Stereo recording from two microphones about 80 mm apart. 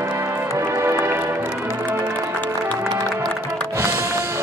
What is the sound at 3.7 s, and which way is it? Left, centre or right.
Music, right.